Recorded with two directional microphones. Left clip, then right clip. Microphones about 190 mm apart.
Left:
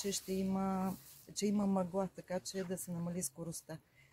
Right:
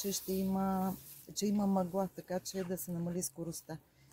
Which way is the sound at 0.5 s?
15° left (ahead or behind).